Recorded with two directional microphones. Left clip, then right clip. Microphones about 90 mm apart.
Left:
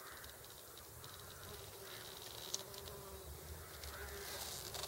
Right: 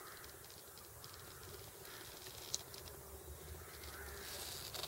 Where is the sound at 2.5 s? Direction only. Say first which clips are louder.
Right 1 dB; 15° left (ahead or behind).